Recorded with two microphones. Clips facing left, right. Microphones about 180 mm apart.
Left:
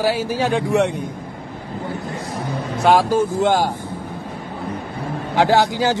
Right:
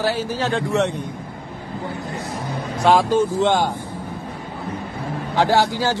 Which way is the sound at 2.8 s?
5° left (ahead or behind).